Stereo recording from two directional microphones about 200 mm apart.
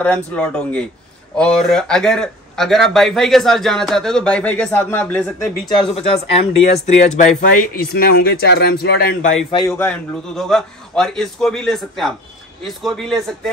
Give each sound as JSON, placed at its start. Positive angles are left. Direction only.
{"t": 0.0, "sound": "speech", "side_deg": 5}
{"t": 5.8, "sound": "speech", "side_deg": 30}
{"t": 9.8, "sound": "speech", "side_deg": 5}